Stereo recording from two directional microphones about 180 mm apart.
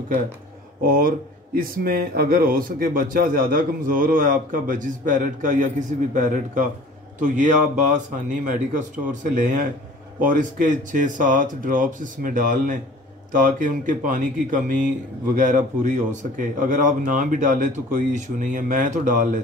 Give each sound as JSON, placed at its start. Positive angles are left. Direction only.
{"t": 0.8, "sound": "speech", "side_deg": -50}